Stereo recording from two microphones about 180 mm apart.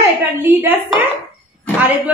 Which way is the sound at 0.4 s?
10° right (ahead or behind).